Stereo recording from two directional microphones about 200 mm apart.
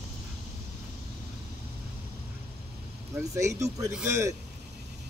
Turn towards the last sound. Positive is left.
turn(degrees=-10)  # may be behind; listen again after turning